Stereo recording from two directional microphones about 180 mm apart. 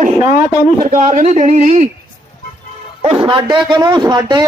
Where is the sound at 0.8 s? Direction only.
50° right (ahead or behind).